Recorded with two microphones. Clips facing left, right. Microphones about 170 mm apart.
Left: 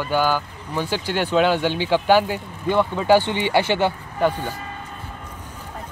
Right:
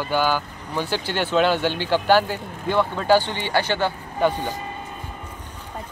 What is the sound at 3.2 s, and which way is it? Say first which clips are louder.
Speech: left 4 dB; 20° left (ahead or behind).